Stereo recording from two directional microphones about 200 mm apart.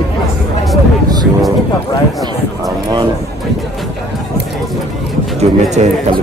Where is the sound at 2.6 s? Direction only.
20° right (ahead or behind).